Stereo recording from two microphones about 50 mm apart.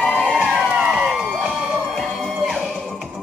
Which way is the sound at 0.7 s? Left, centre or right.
Centre.